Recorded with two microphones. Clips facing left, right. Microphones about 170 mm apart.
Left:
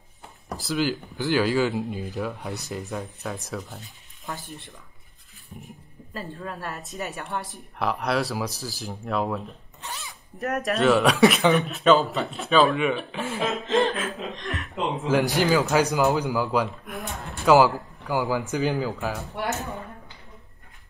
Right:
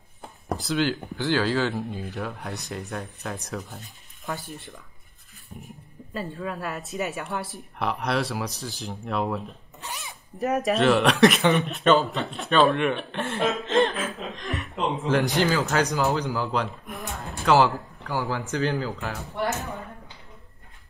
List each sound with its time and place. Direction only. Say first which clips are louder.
0.6 s speech: even; centre (ahead or behind)
3.2 s speech: left 1 dB; centre (ahead or behind)
5.6 s a sound: right 1 dB; centre (ahead or behind)
6.8 s speech: right 3 dB; centre (ahead or behind)
9.8 s zipper: even; 15° right (ahead or behind)
10.4 s a man's voice: right 1 dB; centre (ahead or behind); by 19.6 s 15° left (ahead or behind)